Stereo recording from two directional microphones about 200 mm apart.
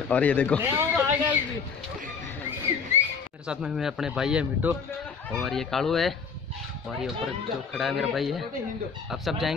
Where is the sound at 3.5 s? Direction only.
Centre (ahead or behind).